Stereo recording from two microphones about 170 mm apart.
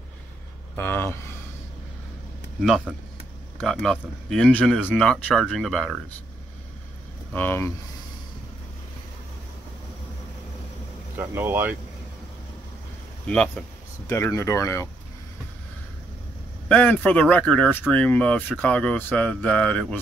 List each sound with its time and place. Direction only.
0.7 s speech: 10° left (ahead or behind)
2.6 s speech: 5° right (ahead or behind)
7.3 s speech: 10° left (ahead or behind)
11.1 s speech: 15° right (ahead or behind)
13.3 s speech: 5° left (ahead or behind)
14.0 s speech: 15° left (ahead or behind)
16.6 s speech: 10° left (ahead or behind)